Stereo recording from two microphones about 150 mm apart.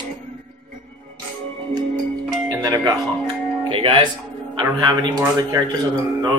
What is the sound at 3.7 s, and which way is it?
Music, 40° right (ahead or behind).